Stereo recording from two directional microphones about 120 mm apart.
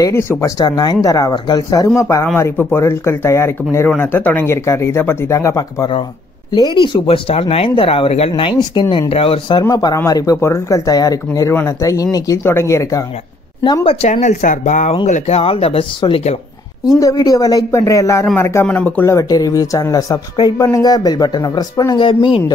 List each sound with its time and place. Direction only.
0.0 s speech: 20° left (ahead or behind)
0.6 s speech: 35° left (ahead or behind)
6.5 s speech: 40° left (ahead or behind)
9.1 s speech: 50° left (ahead or behind)
9.6 s speech: 35° left (ahead or behind)
14.2 s speech: 90° left
15.0 s speech: 75° left (ahead or behind); by 16.3 s 50° left (ahead or behind)
17.0 s speech: 30° left (ahead or behind); by 19.0 s 15° left (ahead or behind)
19.0 s speech: 30° left (ahead or behind)